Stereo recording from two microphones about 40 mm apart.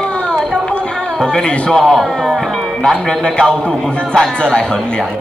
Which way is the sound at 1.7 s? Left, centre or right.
Centre.